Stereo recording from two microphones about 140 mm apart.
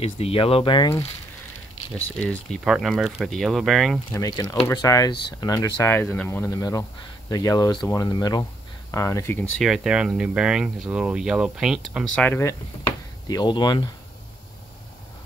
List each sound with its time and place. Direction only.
0.0 s speech: 45° left (ahead or behind)
2.0 s speech: 10° left (ahead or behind)
4.1 s speech: 25° left (ahead or behind)
9.6 s speech: 5° right (ahead or behind)
12.3 s speech: 20° left (ahead or behind)
13.3 s speech: 30° left (ahead or behind)